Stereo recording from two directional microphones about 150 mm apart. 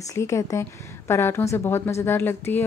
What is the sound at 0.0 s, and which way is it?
Speech, 20° left (ahead or behind).